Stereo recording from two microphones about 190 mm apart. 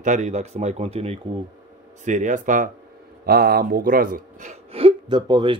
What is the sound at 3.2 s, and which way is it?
Speech, 55° right (ahead or behind).